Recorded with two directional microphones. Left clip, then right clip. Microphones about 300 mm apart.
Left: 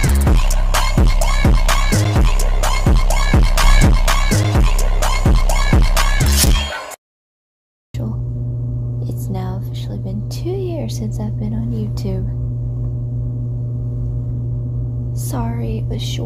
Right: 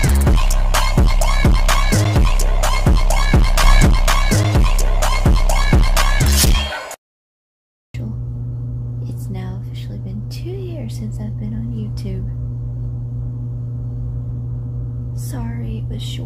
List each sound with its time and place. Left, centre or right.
0.0 s music: centre
10.4 s a sound: centre
15.3 s music: centre